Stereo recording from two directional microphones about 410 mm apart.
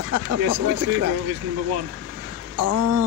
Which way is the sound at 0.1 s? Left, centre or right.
Right.